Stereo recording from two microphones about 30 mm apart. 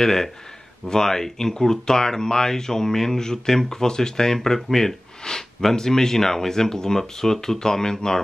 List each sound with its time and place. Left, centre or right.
0.0 s speech: centre